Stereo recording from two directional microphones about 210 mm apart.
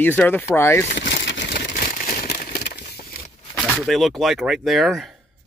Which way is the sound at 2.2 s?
50° left (ahead or behind).